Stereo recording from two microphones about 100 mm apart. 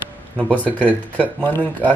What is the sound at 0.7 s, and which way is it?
Speech, 15° left (ahead or behind).